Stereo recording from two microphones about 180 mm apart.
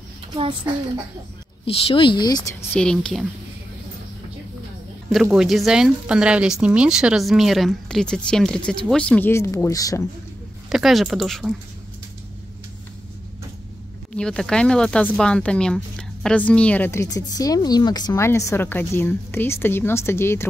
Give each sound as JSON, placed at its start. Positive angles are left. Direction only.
{"t": 0.3, "sound": "a child's voice", "side_deg": -30}
{"t": 1.7, "sound": "speech", "side_deg": 30}
{"t": 2.7, "sound": "a woman's voice", "side_deg": 5}
{"t": 5.1, "sound": "a woman's voice", "side_deg": -5}
{"t": 10.7, "sound": "a woman's voice", "side_deg": 0}
{"t": 14.1, "sound": "speech", "side_deg": 5}